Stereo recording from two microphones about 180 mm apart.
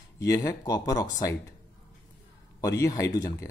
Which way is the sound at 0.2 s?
20° left (ahead or behind).